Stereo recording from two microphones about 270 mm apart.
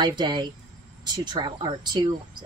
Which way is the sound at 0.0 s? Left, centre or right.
Centre.